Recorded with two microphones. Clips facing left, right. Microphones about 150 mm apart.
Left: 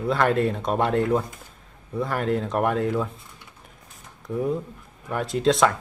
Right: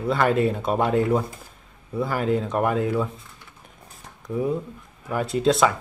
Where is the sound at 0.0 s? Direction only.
Centre (ahead or behind).